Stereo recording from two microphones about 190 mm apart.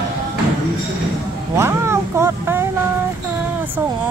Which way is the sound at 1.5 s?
15° right (ahead or behind).